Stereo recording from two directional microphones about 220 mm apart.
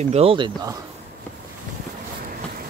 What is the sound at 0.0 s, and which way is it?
Speech, 25° right (ahead or behind).